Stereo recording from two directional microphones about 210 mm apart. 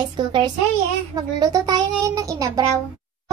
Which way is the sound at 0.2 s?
20° right (ahead or behind).